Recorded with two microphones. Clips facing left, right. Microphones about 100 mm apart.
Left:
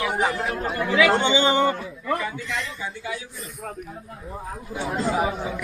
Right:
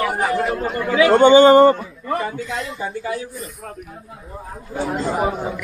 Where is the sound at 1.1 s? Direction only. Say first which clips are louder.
Right 11 dB; 45° right (ahead or behind).